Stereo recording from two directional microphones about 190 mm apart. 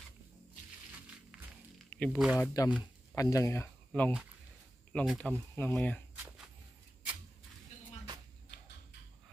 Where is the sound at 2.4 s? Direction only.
20° left (ahead or behind).